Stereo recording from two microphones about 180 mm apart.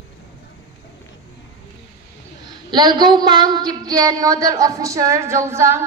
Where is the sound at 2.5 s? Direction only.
25° right (ahead or behind).